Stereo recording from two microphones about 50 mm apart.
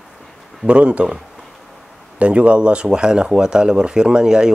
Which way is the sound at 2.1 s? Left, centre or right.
Right.